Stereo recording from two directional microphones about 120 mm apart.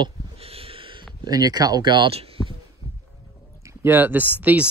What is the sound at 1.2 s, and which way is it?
Speech, 30° right (ahead or behind).